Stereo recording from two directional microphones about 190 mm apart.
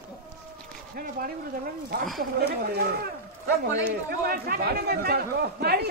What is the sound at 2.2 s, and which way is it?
Speech, 55° right (ahead or behind).